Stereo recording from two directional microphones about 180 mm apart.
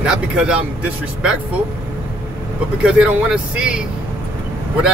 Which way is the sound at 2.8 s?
5° right (ahead or behind).